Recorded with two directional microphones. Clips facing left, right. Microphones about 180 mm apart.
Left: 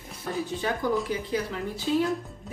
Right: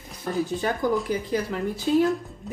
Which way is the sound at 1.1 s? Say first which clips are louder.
Right 3 dB; 40° right (ahead or behind).